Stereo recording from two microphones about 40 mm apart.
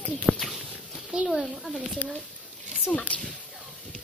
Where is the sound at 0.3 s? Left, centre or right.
Centre.